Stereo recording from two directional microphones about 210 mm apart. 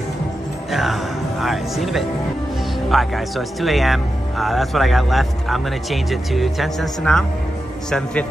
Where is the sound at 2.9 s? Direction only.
Centre (ahead or behind).